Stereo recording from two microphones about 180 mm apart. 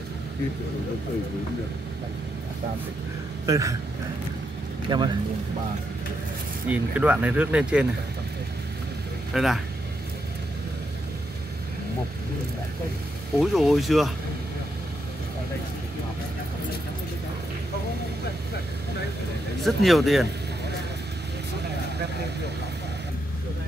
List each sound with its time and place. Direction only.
3.4 s a man's voice: 20° right (ahead or behind)
4.8 s a man's voice: 25° right (ahead or behind)
6.7 s speech: 10° right (ahead or behind)
9.3 s speech: centre (ahead or behind)
13.4 s speech: centre (ahead or behind)
19.6 s speech: centre (ahead or behind)